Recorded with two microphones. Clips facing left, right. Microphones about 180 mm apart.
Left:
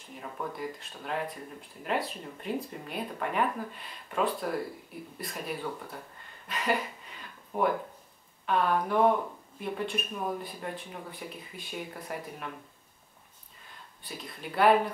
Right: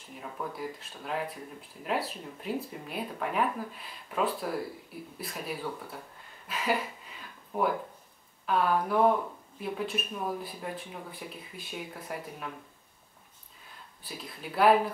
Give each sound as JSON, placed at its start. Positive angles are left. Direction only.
{"t": 0.1, "sound": "speech", "side_deg": 0}
{"t": 14.0, "sound": "speech", "side_deg": 0}